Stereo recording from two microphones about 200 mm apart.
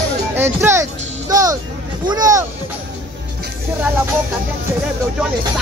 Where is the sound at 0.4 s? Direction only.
10° right (ahead or behind).